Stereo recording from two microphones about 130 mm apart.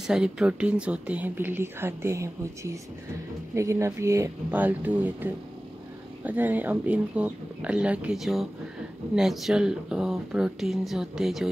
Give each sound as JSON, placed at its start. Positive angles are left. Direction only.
{"t": 0.0, "sound": "speech", "side_deg": -5}